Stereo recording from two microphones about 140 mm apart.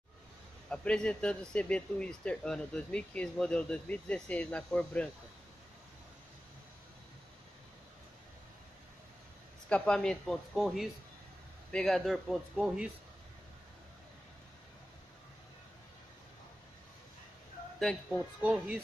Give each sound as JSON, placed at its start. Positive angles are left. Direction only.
{"t": 0.7, "sound": "speech", "side_deg": 5}
{"t": 9.7, "sound": "speech", "side_deg": 10}
{"t": 18.4, "sound": "speech", "side_deg": -5}